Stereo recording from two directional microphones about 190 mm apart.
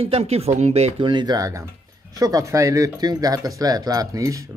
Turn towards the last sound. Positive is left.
turn(degrees=-15)  # may be behind; listen again after turning